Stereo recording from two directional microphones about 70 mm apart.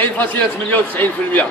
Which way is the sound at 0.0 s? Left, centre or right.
Left.